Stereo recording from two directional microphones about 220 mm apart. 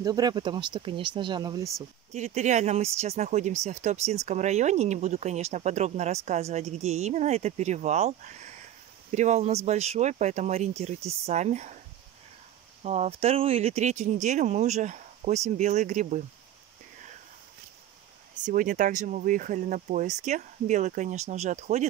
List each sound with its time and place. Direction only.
0.0 s speech: 15° right (ahead or behind)
2.1 s speech: 30° right (ahead or behind)
9.1 s speech: 30° right (ahead or behind)
12.8 s speech: 30° right (ahead or behind)
18.4 s speech: 35° right (ahead or behind)